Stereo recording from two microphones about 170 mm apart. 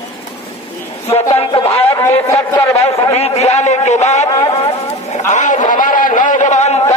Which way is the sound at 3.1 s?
40° left (ahead or behind).